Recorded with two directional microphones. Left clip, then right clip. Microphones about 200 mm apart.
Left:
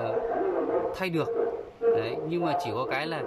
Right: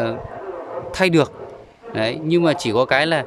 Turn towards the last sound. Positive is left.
turn(degrees=-50)  # may be behind; listen again after turning